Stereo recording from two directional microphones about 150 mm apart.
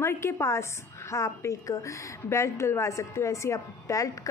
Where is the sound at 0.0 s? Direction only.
15° left (ahead or behind).